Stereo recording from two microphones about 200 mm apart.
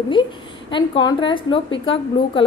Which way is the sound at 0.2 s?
20° left (ahead or behind).